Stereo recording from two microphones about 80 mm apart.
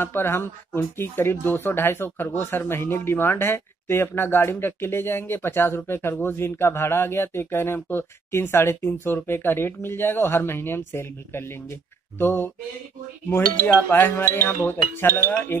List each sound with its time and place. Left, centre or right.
0.0 s speech: left
13.8 s speech: left